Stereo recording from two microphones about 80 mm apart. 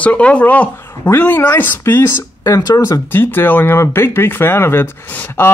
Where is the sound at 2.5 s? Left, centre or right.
Left.